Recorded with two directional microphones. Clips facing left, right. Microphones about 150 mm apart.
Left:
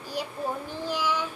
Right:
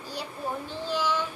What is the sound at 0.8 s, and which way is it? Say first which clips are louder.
Child singing: right 1 dB; 10° left (ahead or behind).